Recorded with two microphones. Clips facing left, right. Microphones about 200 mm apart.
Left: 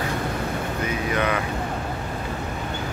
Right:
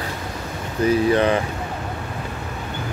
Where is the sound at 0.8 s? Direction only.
30° right (ahead or behind).